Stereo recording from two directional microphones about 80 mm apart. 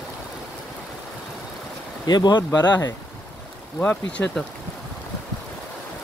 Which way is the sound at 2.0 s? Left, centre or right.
Left.